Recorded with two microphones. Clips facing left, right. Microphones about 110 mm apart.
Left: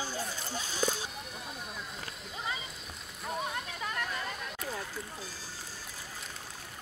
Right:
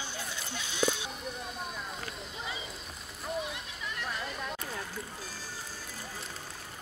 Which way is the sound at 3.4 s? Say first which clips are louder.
Left 3 dB; 45° left (ahead or behind).